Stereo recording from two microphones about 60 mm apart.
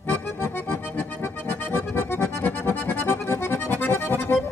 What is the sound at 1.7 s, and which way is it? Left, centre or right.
Accordion, left.